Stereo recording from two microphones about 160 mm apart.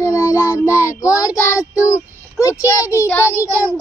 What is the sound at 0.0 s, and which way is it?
Child singing, 20° left (ahead or behind).